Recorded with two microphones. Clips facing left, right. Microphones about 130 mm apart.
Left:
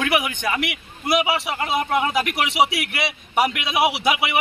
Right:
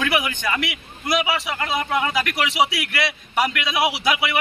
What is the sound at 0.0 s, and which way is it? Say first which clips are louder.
A man's voice: left 1 dB; 10° left (ahead or behind).